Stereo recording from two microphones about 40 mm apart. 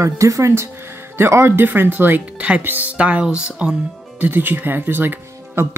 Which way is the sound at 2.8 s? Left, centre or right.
Right.